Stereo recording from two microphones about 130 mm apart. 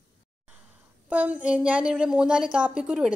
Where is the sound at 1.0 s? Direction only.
10° right (ahead or behind).